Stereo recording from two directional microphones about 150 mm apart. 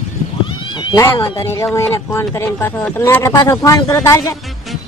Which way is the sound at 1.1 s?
35° left (ahead or behind).